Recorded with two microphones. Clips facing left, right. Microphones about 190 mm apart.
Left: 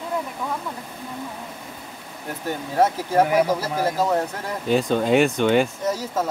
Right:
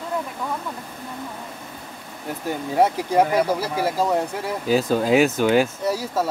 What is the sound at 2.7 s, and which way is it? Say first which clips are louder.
Speech: right 1 dB; 15° right (ahead or behind).